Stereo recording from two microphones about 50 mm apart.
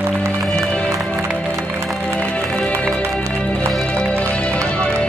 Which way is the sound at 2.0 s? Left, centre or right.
Centre.